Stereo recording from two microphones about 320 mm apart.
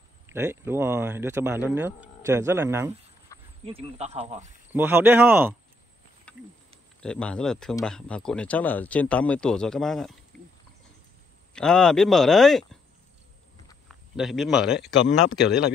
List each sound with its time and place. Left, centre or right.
0.3 s speech: centre
3.6 s speech: centre
4.7 s speech: centre
7.0 s speech: centre
10.3 s a sound: centre
11.5 s speech: centre
13.8 s a man's voice: centre
15.0 s speech: left